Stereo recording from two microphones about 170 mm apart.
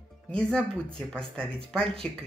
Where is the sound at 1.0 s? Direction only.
5° left (ahead or behind).